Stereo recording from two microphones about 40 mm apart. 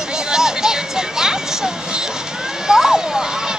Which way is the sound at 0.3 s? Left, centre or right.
Centre.